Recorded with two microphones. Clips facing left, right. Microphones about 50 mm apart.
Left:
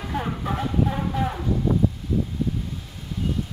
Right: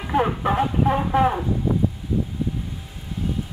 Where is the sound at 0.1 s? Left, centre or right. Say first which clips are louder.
Right 8 dB; right.